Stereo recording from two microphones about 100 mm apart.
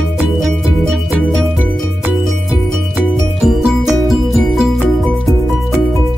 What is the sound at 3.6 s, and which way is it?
Music, centre (ahead or behind).